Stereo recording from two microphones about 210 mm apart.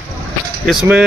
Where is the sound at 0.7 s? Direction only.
5° right (ahead or behind).